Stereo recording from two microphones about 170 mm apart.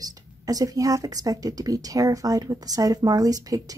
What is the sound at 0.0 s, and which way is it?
A woman's voice, 20° right (ahead or behind).